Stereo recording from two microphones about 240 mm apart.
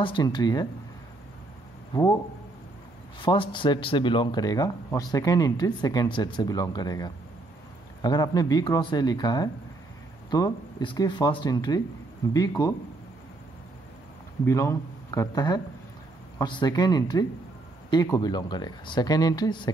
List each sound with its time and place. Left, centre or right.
0.0 s speech: centre
3.2 s speech: centre
14.4 s speech: centre